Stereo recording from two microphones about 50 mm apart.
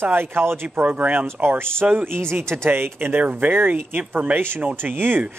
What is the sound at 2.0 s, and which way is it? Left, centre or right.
Speech, right.